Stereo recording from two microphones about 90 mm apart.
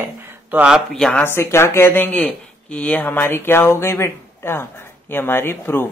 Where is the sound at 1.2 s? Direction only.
30° left (ahead or behind).